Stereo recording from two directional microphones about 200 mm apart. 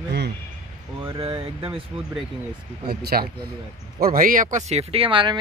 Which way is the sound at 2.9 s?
50° right (ahead or behind).